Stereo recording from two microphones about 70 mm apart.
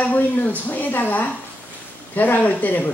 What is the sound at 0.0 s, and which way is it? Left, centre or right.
Speech, left.